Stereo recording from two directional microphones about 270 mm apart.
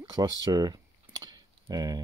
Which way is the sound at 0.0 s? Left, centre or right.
Centre.